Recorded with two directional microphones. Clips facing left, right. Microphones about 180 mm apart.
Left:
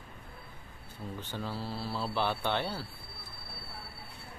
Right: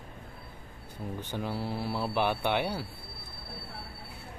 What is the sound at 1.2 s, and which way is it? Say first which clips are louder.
Speech: right 4 dB; 15° right (ahead or behind).